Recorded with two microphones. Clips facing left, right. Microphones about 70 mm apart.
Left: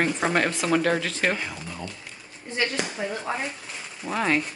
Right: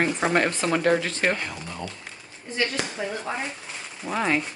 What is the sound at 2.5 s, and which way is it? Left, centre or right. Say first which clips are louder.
Speech: even; centre.